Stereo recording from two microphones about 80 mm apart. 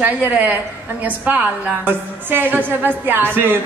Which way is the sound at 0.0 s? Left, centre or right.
Right.